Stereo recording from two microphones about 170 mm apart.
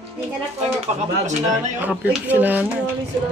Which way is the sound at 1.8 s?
10° right (ahead or behind).